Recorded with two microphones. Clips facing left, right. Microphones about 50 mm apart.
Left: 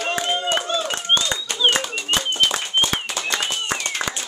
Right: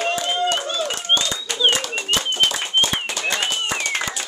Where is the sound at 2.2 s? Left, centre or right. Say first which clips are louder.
Even; right.